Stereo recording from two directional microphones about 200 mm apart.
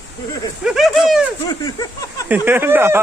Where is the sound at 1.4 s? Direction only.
20° left (ahead or behind).